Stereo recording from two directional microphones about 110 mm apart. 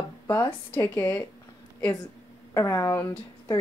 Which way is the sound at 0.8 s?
25° left (ahead or behind).